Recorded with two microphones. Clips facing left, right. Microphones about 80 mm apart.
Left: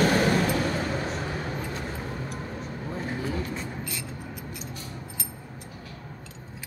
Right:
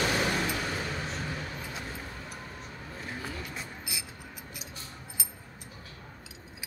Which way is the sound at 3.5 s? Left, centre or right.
Centre.